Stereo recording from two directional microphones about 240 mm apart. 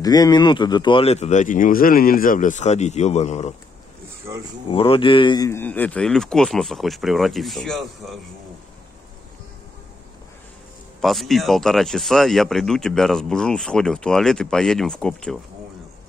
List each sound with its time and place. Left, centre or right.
0.0 s speech: centre
4.6 s speech: left; by 8.2 s centre
11.0 s speech: centre